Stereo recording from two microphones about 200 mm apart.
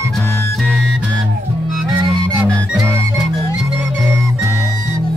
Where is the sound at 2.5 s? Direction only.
5° left (ahead or behind).